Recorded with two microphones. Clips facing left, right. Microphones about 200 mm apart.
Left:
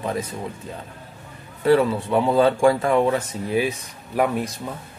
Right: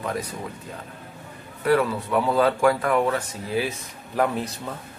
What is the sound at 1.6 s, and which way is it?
Speech, 25° left (ahead or behind).